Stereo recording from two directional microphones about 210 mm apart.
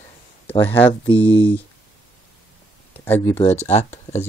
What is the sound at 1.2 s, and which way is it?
Speech, 25° left (ahead or behind).